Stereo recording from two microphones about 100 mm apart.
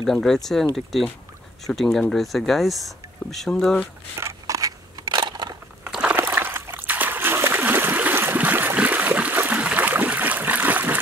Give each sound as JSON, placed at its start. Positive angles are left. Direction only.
{"t": 0.0, "sound": "speech", "side_deg": 5}
{"t": 4.2, "sound": "scissors", "side_deg": -35}
{"t": 5.0, "sound": "crushing", "side_deg": -45}
{"t": 5.9, "sound": "a sound", "side_deg": -10}
{"t": 6.1, "sound": "splash", "side_deg": -20}